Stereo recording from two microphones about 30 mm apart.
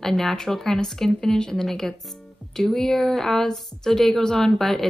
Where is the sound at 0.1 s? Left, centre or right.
Centre.